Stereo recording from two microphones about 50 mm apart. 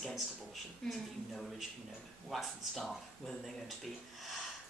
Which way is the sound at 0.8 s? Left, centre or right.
Centre.